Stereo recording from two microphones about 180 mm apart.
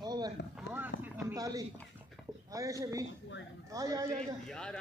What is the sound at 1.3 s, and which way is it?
Speech, 20° right (ahead or behind).